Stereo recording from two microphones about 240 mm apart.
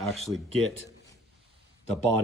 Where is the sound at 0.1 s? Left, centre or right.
Centre.